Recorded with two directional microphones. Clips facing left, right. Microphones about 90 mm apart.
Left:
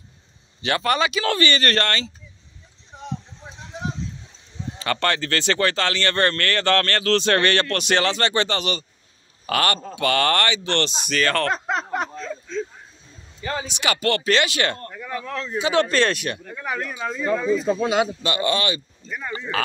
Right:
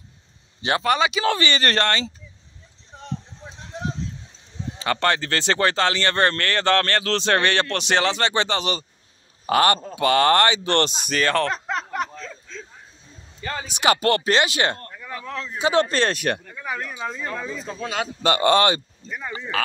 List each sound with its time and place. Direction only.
0.6 s speech: 20° right (ahead or behind)
0.8 s speech: 10° right (ahead or behind)
4.7 s speech: 20° right (ahead or behind)
10.6 s speech: 40° right (ahead or behind)
11.1 s speech: 25° right (ahead or behind)
11.6 s a sound: 20° left (ahead or behind)
14.0 s speech: 30° right (ahead or behind)
14.9 s a sound: centre (ahead or behind)
15.6 s speech: 35° right (ahead or behind)
16.4 s a man's voice: 5° left (ahead or behind)
17.6 s a man's voice: 15° left (ahead or behind)
18.2 s speech: 40° right (ahead or behind)
19.0 s speech: 5° right (ahead or behind)